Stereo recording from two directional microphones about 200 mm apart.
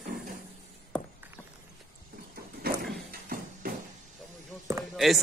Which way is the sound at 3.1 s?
45° right (ahead or behind).